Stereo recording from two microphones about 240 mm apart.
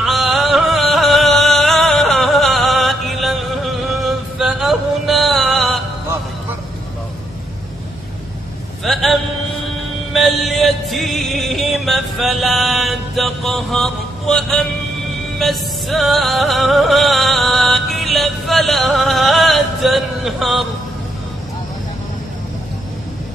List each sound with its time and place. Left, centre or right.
0.0 s music: centre
8.8 s mantra: centre
10.1 s music: centre